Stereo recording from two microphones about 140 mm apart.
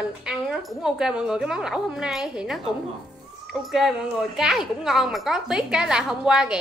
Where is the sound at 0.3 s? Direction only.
5° right (ahead or behind).